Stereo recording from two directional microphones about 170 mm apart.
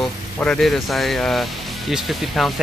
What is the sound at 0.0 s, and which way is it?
Speech, 5° left (ahead or behind).